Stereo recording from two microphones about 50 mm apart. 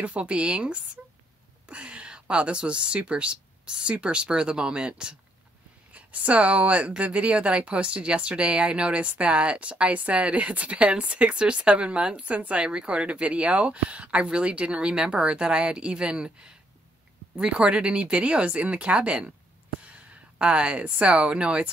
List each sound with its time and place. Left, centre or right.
0.0 s speech: right
5.9 s speech: right